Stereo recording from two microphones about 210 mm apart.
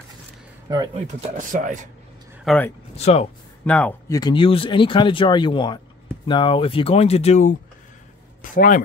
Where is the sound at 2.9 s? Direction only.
30° left (ahead or behind).